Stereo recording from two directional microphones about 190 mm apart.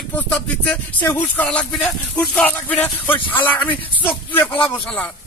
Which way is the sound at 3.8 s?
30° left (ahead or behind).